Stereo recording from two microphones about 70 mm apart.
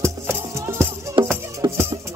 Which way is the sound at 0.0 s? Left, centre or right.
Right.